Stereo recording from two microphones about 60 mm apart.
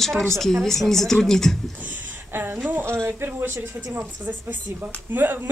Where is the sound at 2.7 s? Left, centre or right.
Right.